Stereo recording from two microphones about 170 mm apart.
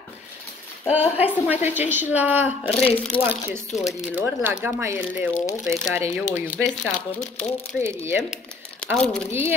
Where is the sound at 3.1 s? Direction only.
30° left (ahead or behind).